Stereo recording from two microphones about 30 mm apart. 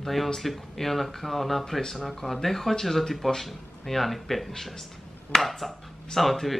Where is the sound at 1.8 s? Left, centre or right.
Centre.